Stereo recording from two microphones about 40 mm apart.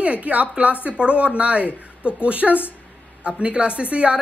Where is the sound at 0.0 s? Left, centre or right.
Right.